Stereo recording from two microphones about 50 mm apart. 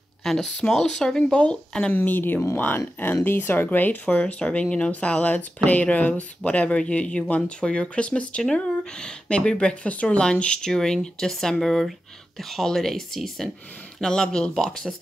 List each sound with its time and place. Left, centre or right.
0.2 s speech: centre
2.0 s speech: left
3.7 s speech: left; by 14.9 s centre